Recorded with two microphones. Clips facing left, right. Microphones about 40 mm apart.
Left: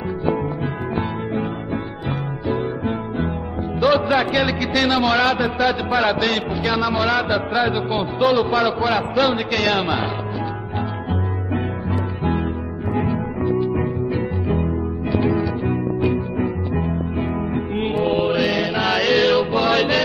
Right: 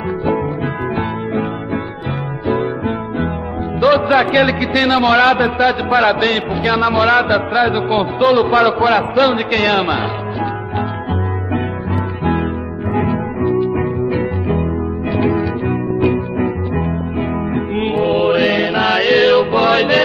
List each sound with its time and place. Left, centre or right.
3.8 s a man's voice: right
13.0 s music: right
15.2 s music: centre